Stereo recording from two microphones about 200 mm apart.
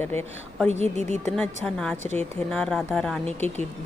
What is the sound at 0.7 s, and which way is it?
Speech, 35° right (ahead or behind).